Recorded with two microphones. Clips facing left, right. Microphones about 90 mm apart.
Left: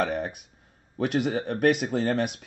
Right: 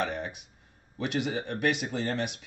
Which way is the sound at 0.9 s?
45° left (ahead or behind).